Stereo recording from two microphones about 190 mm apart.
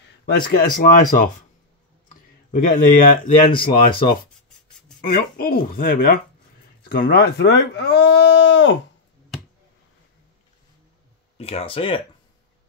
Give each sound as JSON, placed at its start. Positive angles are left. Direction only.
{"t": 0.0, "sound": "speech", "side_deg": 55}
{"t": 2.0, "sound": "a sound", "side_deg": 45}
{"t": 3.4, "sound": "speech", "side_deg": 25}
{"t": 5.0, "sound": "speech", "side_deg": 50}
{"t": 11.3, "sound": "speech", "side_deg": 30}